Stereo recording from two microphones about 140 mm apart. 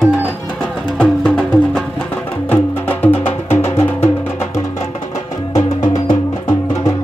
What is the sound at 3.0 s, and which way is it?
Music, 15° left (ahead or behind).